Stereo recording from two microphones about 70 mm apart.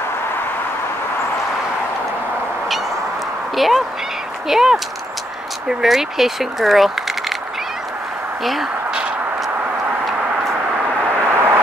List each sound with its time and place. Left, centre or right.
3.5 s speech: centre
10.9 s vehicle: right
11.3 s vehicle: right